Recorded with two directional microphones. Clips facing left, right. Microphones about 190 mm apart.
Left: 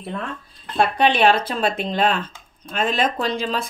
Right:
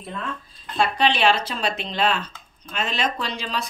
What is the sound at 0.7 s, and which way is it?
Speech, 55° left (ahead or behind).